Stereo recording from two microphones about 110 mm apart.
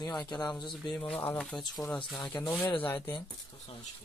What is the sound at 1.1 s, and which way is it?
Speech, 15° left (ahead or behind).